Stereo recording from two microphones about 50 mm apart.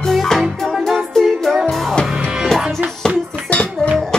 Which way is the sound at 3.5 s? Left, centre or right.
Left.